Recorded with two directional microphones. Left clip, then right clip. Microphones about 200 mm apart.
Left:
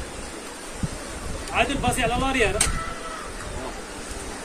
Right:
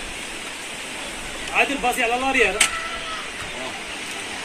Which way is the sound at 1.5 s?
45° left (ahead or behind).